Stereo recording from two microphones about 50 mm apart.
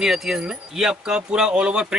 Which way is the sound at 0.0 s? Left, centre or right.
Centre.